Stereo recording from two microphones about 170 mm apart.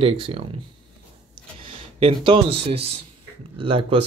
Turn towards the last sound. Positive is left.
turn(degrees=-30)  # may be behind; listen again after turning